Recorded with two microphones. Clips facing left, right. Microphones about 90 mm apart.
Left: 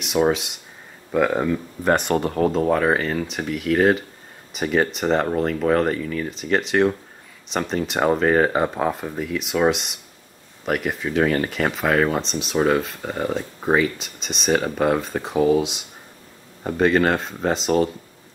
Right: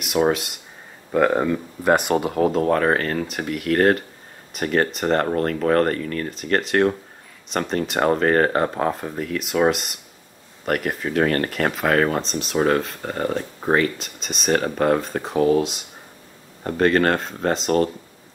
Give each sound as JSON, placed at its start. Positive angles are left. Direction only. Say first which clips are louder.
{"t": 0.0, "sound": "speech", "louder": "even", "side_deg": 0}